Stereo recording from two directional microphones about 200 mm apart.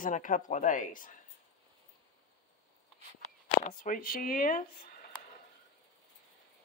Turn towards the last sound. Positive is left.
turn(degrees=45)  # may be behind; listen again after turning